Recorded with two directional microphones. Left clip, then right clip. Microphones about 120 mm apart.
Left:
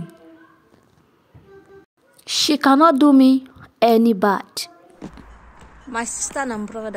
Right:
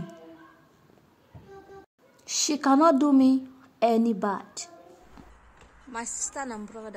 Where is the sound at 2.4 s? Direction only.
40° left (ahead or behind).